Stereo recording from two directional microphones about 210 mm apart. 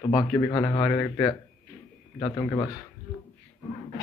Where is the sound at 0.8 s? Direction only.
5° left (ahead or behind).